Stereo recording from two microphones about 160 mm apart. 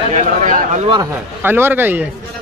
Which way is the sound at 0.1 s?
50° right (ahead or behind).